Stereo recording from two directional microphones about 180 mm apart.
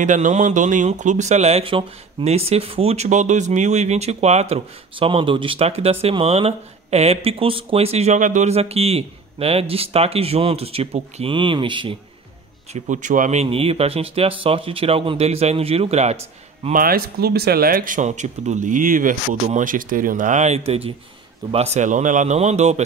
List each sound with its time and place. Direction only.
0.0 s speech: 45° right (ahead or behind); by 12.0 s 25° right (ahead or behind)
12.7 s speech: 40° right (ahead or behind)
16.7 s speech: 55° right (ahead or behind); by 22.8 s 40° right (ahead or behind)